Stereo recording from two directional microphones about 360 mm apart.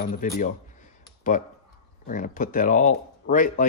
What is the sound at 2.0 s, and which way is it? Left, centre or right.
Speech, left.